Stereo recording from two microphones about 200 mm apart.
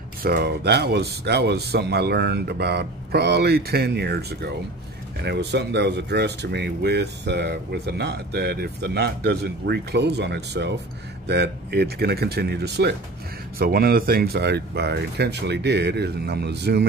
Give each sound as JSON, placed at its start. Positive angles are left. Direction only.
{"t": 0.2, "sound": "speech", "side_deg": -50}